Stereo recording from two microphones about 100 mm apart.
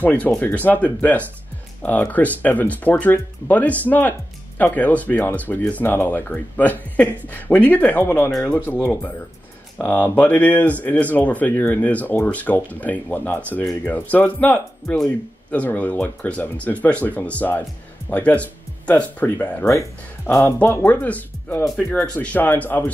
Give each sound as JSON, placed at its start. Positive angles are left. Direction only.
{"t": 0.0, "sound": "speech", "side_deg": 15}
{"t": 20.4, "sound": "speech", "side_deg": 20}